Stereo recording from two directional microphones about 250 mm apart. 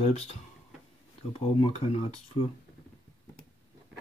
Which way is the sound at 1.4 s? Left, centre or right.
Left.